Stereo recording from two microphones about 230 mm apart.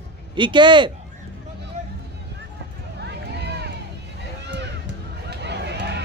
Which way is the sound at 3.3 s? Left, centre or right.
Right.